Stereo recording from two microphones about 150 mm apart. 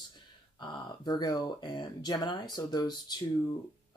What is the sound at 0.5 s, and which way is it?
Speech, 30° left (ahead or behind).